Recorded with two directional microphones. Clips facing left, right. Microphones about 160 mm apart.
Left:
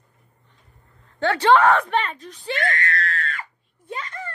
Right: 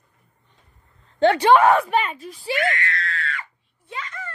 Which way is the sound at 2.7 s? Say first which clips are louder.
Left 2 dB; 40° left (ahead or behind).